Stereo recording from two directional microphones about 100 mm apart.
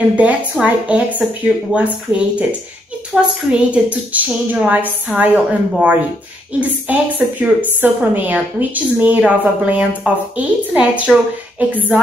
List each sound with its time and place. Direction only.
0.1 s a woman's voice: 15° right (ahead or behind)